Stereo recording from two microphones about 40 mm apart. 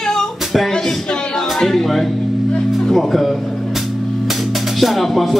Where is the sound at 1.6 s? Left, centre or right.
Centre.